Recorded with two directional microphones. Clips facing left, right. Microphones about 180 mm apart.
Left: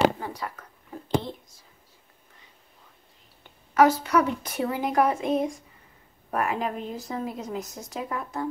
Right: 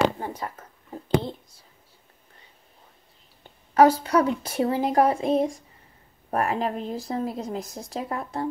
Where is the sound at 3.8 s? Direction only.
30° right (ahead or behind).